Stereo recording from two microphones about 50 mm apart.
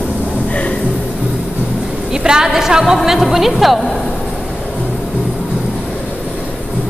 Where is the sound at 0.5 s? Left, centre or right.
Left.